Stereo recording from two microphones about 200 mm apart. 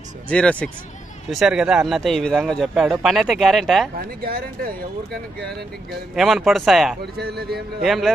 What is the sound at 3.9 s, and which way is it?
Speech, 50° right (ahead or behind).